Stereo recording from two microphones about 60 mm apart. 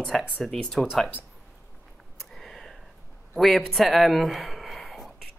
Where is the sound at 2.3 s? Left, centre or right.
Centre.